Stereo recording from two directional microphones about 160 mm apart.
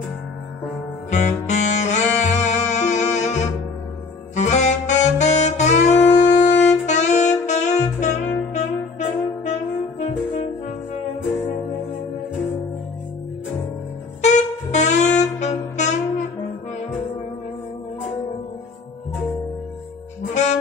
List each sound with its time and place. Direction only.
1.1 s music: 45° left (ahead or behind)
4.4 s saxophone: 45° left (ahead or behind)
14.2 s saxophone: 45° left (ahead or behind)